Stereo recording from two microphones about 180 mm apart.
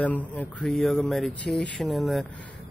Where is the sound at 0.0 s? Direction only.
10° left (ahead or behind).